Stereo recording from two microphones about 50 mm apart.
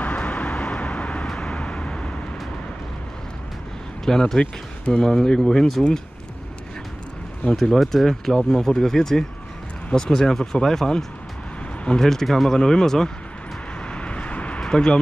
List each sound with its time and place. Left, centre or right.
0.0 s vehicle: left
1.2 s vehicle: centre
4.0 s speech: centre
7.5 s speech: centre
13.9 s vehicle: left
14.6 s speech: centre